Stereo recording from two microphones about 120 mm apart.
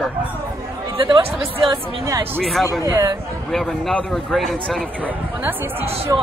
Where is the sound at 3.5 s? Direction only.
Centre (ahead or behind).